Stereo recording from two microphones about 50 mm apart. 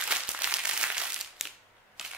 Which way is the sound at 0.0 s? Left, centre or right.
Right.